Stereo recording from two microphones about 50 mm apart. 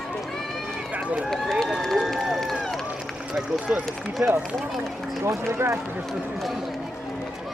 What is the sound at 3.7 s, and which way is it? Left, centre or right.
Speech, right.